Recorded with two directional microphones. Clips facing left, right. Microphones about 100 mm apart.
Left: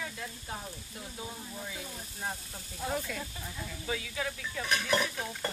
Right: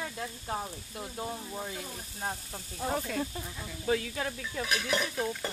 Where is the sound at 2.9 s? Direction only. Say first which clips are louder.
Right 4 dB; 40° right (ahead or behind).